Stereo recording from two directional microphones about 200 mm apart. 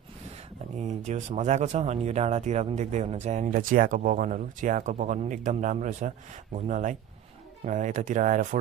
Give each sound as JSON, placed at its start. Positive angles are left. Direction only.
{"t": 0.7, "sound": "speech", "side_deg": -35}